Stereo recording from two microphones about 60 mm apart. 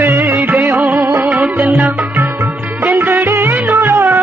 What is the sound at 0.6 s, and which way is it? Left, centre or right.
Music, centre.